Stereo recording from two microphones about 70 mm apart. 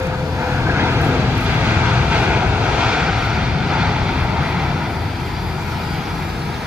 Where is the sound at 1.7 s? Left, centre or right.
Centre.